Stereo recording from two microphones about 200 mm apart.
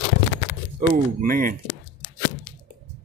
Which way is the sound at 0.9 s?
45° right (ahead or behind).